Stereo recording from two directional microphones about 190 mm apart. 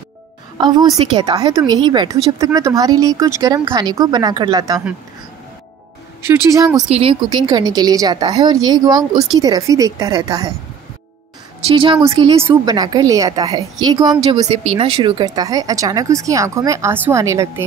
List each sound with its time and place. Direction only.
0.6 s speech: 20° right (ahead or behind)
6.2 s speech: 15° right (ahead or behind)
6.9 s speech: 30° right (ahead or behind)
11.6 s speech: 25° right (ahead or behind)